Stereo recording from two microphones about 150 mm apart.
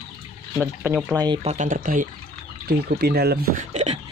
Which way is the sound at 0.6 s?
10° right (ahead or behind).